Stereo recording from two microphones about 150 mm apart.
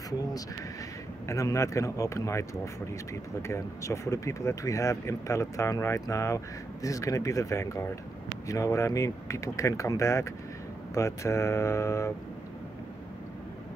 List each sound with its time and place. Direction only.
1.2 s speech: 20° left (ahead or behind)